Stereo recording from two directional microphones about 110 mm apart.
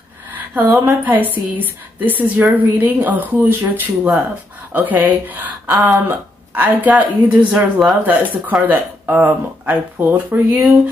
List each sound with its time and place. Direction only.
1.0 s speech: 15° right (ahead or behind)